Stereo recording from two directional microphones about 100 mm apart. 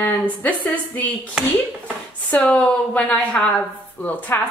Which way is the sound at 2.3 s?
10° left (ahead or behind).